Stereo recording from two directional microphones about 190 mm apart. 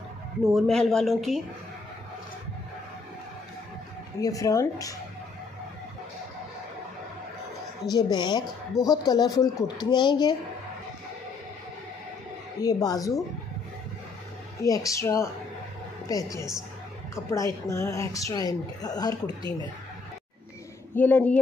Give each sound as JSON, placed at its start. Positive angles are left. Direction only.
{"t": 0.6, "sound": "speech", "side_deg": 0}
{"t": 4.2, "sound": "a woman's voice", "side_deg": 20}
{"t": 7.9, "sound": "a woman's voice", "side_deg": 25}
{"t": 12.5, "sound": "a woman's voice", "side_deg": 20}
{"t": 14.6, "sound": "a woman's voice", "side_deg": 15}
{"t": 20.9, "sound": "a woman's voice", "side_deg": 10}